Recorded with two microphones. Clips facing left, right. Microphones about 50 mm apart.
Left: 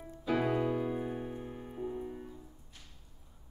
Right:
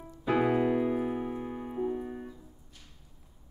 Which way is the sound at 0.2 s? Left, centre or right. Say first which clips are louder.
Right 5 dB; right.